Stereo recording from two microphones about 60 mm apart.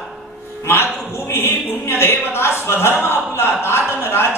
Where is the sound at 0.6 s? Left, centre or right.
Left.